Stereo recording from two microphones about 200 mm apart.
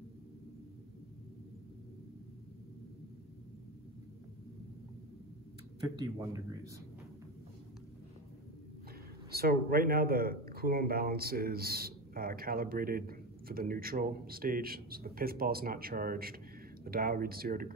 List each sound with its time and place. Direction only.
5.9 s speech: 15° right (ahead or behind)
9.3 s speech: 50° right (ahead or behind)